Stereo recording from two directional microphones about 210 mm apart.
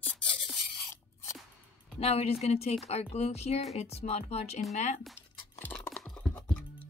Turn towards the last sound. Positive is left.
turn(degrees=5)  # may be behind; listen again after turning